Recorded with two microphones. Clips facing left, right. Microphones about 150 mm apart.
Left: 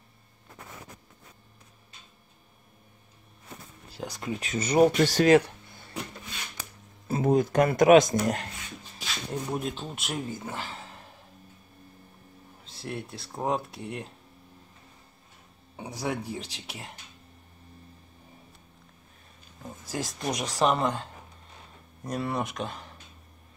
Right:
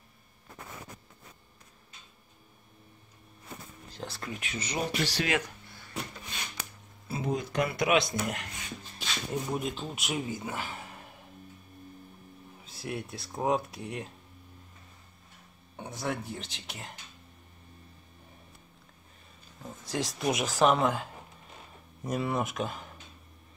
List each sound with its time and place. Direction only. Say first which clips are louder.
3.9 s a sound: left 4 dB; 10° left (ahead or behind)
4.4 s speech: left 14 dB; 45° left (ahead or behind)
7.1 s speech: left 9 dB; 50° left (ahead or behind)
8.9 s speech: even; centre (ahead or behind)
12.6 s speech: even; centre (ahead or behind)
15.7 s speech: left 2 dB; 5° left (ahead or behind)
19.7 s speech: right 1 dB; 5° left (ahead or behind)